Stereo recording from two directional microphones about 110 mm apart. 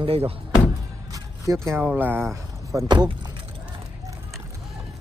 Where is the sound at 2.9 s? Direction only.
40° right (ahead or behind).